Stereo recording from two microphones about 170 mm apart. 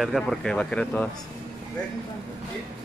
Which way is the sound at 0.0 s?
Centre (ahead or behind).